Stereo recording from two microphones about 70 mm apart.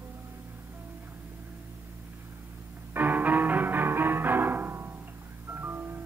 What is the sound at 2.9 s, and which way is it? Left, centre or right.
Music, right.